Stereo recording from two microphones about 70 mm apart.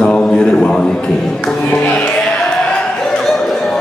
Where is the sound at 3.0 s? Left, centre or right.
Centre.